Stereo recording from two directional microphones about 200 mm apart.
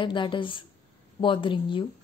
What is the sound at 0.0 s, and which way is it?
Speech, 25° left (ahead or behind).